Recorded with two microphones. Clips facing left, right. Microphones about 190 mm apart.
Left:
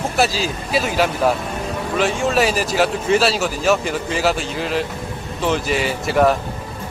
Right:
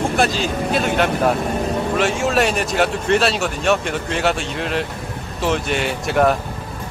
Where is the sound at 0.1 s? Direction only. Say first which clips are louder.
Right 1 dB; 5° left (ahead or behind).